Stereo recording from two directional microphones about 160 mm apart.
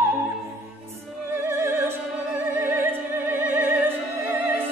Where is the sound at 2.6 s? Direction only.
15° right (ahead or behind).